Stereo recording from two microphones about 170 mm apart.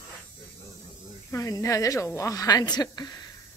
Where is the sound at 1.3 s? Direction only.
20° left (ahead or behind).